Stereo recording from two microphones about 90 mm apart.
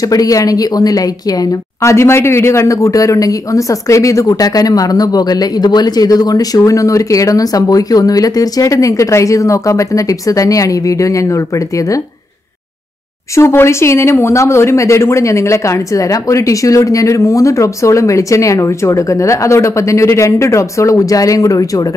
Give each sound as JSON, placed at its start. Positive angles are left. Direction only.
{"t": 0.0, "sound": "a woman's voice", "side_deg": 40}
{"t": 13.3, "sound": "a woman's voice", "side_deg": 30}